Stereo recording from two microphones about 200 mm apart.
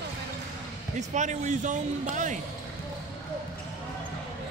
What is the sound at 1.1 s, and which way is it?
Speech, 35° right (ahead or behind).